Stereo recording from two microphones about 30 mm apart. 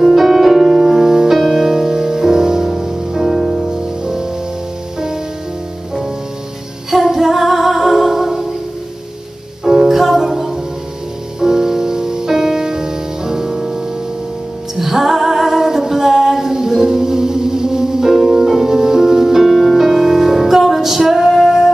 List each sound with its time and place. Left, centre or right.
0.0 s music: centre
4.0 s music: centre
6.9 s female singing: centre
7.8 s music: centre
9.7 s music: centre
14.8 s music: centre
18.1 s music: centre